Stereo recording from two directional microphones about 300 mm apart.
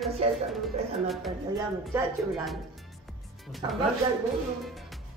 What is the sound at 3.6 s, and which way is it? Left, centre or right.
Speech, centre.